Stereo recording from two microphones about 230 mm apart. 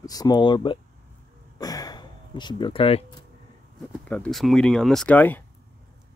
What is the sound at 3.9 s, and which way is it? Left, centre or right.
Speech, centre.